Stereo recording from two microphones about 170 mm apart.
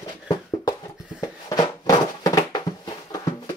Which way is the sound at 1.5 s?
20° left (ahead or behind).